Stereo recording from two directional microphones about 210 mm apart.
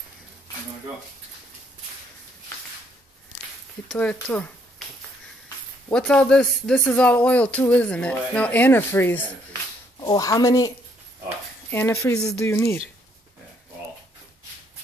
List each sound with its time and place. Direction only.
3.9 s speech: 5° left (ahead or behind)
5.9 s speech: 5° left (ahead or behind)
11.7 s speech: 10° left (ahead or behind)